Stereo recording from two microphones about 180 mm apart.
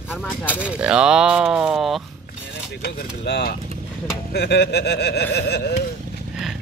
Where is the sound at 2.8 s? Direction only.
65° left (ahead or behind).